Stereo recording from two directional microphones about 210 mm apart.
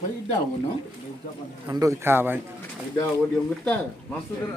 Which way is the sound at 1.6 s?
15° right (ahead or behind).